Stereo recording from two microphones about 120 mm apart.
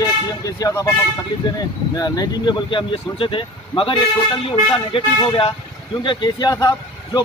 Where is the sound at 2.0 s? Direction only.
35° left (ahead or behind); by 5.5 s 50° left (ahead or behind).